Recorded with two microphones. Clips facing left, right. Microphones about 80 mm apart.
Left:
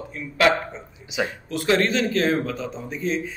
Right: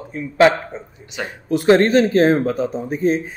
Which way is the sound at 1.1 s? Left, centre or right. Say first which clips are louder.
Left 2 dB; centre.